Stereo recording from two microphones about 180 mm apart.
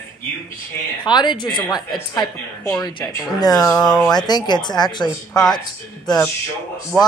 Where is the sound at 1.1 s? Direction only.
25° left (ahead or behind).